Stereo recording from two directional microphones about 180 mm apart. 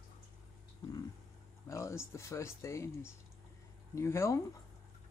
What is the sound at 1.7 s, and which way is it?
Speech, 15° left (ahead or behind).